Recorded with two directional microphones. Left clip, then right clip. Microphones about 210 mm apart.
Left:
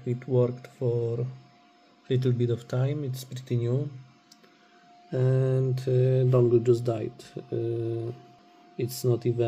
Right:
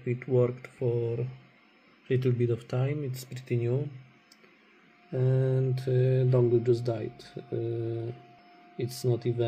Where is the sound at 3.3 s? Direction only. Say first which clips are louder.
Even; 10° left (ahead or behind).